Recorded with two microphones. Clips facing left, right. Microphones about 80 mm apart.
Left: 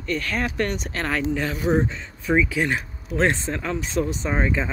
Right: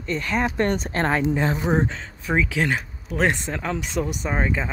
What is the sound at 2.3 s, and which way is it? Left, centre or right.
Speech, centre.